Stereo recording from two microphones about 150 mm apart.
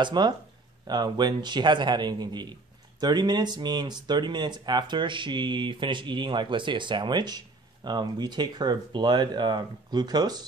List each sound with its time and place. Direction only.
0.0 s a man's voice: 30° right (ahead or behind)